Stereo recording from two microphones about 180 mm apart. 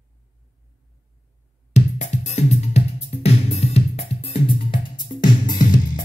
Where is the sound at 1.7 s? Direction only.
40° left (ahead or behind).